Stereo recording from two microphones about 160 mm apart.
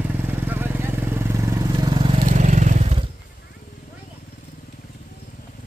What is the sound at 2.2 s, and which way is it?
Vehicle, 50° right (ahead or behind).